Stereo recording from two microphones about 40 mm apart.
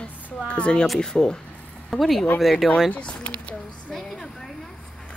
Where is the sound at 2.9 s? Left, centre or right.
Left.